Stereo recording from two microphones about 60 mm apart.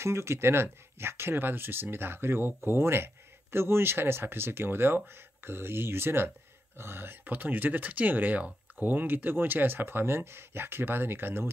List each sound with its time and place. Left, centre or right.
0.0 s speech: right